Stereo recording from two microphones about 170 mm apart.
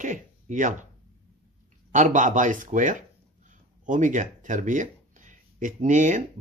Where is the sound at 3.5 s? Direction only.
50° right (ahead or behind).